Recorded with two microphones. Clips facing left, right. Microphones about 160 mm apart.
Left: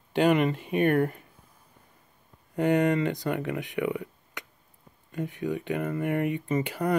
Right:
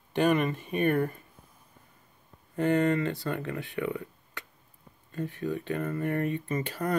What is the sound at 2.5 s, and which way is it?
Speech, 15° left (ahead or behind).